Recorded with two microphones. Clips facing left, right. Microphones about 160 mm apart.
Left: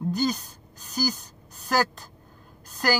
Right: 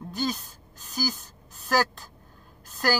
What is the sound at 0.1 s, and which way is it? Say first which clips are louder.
Speech: left 3 dB; centre (ahead or behind).